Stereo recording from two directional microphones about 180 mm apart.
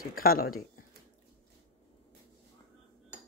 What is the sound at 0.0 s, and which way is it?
Speech, 55° left (ahead or behind).